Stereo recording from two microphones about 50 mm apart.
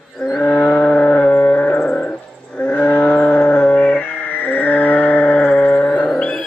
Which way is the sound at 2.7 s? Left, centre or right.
Left.